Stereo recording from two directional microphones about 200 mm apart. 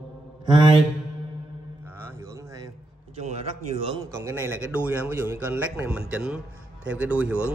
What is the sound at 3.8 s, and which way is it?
A man's voice, 20° right (ahead or behind).